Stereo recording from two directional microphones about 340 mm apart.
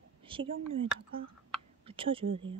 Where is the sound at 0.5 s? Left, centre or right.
Right.